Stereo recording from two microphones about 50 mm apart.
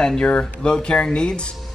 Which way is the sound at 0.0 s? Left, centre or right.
Centre.